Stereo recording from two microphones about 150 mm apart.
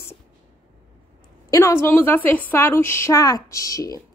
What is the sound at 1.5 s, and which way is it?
A woman's voice, 20° left (ahead or behind).